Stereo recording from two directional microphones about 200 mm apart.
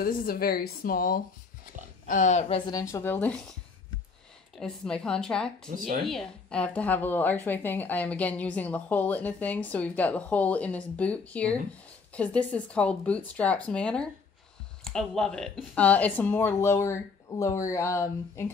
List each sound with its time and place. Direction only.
0.0 s a woman's voice: 45° left (ahead or behind); by 3.5 s 5° left (ahead or behind)
4.6 s a woman's voice: 5° left (ahead or behind)